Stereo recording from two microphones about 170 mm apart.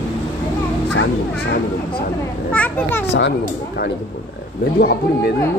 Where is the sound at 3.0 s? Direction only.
90° left.